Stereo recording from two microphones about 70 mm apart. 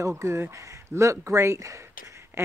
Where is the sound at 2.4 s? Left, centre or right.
Right.